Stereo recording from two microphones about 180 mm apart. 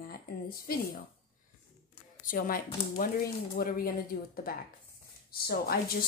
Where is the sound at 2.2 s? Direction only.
50° left (ahead or behind).